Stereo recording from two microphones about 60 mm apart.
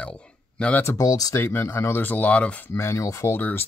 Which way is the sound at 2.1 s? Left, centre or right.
Left.